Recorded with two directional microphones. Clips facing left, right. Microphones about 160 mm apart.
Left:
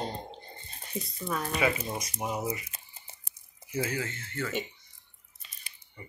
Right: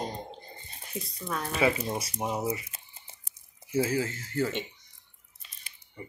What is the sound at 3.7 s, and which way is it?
Speech, 30° right (ahead or behind).